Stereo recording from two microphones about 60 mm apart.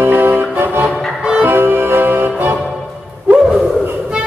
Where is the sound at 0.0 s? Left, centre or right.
Right.